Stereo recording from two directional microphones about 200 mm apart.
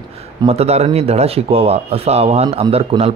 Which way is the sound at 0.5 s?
30° right (ahead or behind).